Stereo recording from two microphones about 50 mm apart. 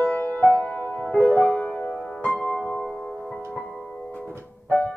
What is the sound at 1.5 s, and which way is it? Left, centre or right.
Music, left.